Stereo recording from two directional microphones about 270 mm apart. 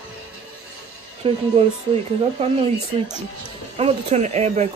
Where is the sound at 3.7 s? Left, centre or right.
Right.